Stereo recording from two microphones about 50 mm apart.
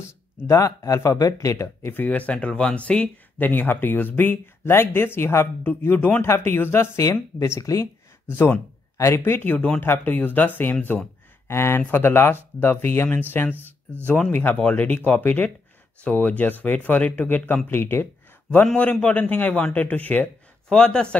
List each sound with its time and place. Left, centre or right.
0.5 s speech: left
2.0 s speech: left
3.3 s speech: left
4.6 s speech: left
5.6 s speech: left
6.2 s speech: left
6.5 s speech: left
7.0 s speech: left
8.3 s speech: left
11.4 s speech: left
13.3 s speech: left
16.0 s speech: left
19.1 s speech: left
20.6 s a man's voice: centre